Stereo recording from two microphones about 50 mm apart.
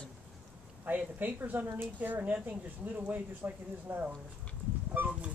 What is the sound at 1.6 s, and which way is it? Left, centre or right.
Speech, right.